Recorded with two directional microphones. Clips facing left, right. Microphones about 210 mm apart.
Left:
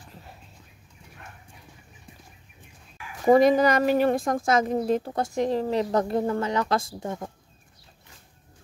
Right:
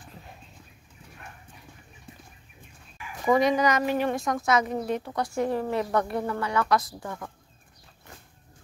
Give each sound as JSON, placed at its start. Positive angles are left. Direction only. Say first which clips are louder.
{"t": 3.3, "sound": "a woman's voice", "louder": "left 5 dB", "side_deg": 50}
{"t": 3.6, "sound": "speech", "louder": "left 4 dB", "side_deg": 35}
{"t": 4.4, "sound": "a woman's voice", "louder": "left 2 dB", "side_deg": 50}
{"t": 4.7, "sound": "speech", "louder": "left 4 dB", "side_deg": 30}